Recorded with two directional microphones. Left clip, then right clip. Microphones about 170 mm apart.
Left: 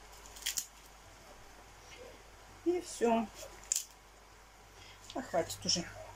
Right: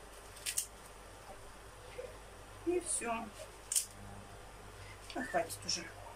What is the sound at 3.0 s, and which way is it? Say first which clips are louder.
Speech: left 14 dB; 45° left (ahead or behind).